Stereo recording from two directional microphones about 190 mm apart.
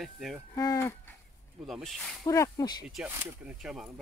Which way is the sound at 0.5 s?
15° left (ahead or behind).